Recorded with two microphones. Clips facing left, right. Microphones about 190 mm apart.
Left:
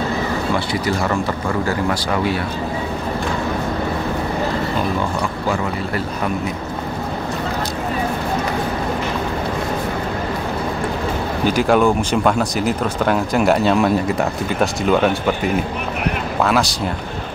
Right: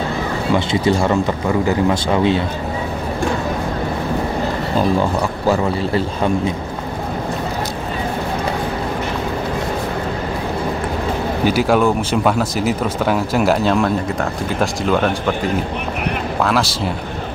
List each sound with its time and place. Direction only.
1.7 s speech: 20° right (ahead or behind)
5.5 s speech: 30° right (ahead or behind)
11.4 s speech: 5° right (ahead or behind)
16.3 s speech: centre (ahead or behind)